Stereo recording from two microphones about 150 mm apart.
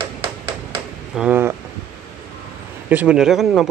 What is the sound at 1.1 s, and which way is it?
Speech, 5° right (ahead or behind).